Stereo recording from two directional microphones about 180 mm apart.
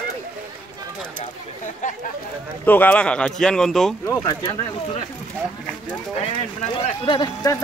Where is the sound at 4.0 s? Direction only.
20° left (ahead or behind).